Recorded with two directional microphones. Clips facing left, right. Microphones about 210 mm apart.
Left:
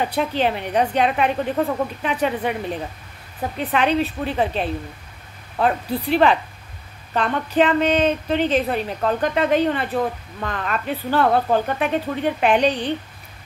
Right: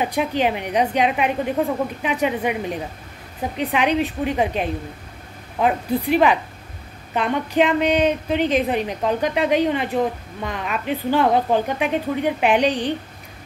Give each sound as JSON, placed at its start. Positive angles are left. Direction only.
{"t": 0.0, "sound": "a woman's voice", "side_deg": -10}